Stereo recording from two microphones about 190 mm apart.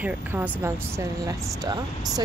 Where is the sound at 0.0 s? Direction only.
10° right (ahead or behind).